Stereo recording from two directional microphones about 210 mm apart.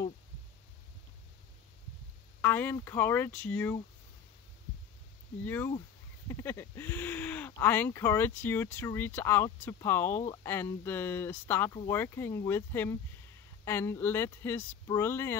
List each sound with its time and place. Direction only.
2.4 s speech: 10° left (ahead or behind)
5.4 s speech: 10° left (ahead or behind)